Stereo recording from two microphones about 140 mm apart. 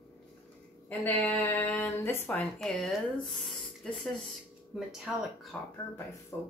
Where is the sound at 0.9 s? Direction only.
10° left (ahead or behind).